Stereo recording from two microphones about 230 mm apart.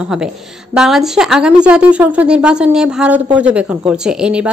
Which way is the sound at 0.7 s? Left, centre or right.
Centre.